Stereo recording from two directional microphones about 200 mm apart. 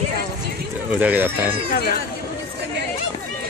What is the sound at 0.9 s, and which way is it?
Speech, 10° right (ahead or behind).